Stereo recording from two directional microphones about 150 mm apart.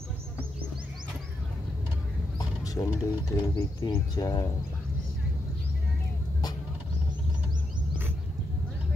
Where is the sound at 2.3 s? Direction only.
25° left (ahead or behind).